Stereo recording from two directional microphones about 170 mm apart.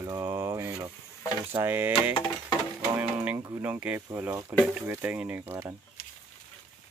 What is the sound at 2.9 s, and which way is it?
Speech, 10° right (ahead or behind).